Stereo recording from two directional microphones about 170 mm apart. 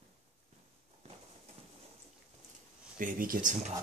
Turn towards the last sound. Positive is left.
turn(degrees=-45)  # may be behind; listen again after turning